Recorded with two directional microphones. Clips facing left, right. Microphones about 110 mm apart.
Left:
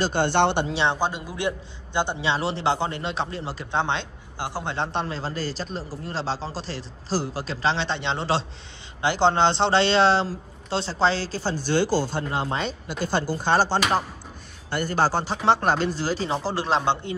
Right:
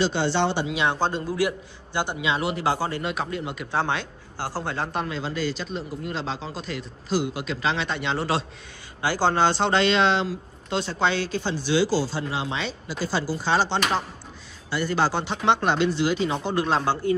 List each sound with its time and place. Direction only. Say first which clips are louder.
0.0 s speech: left 2 dB; 55° left (ahead or behind)
0.7 s speech: left 1 dB; 30° left (ahead or behind)
0.9 s a man's voice: right 3 dB; 15° left (ahead or behind); by 13.7 s 50° left (ahead or behind)
13.7 s a man's voice: left 2 dB; 10° left (ahead or behind)
14.7 s speech: left 1 dB; 45° left (ahead or behind); by 17.1 s 25° left (ahead or behind)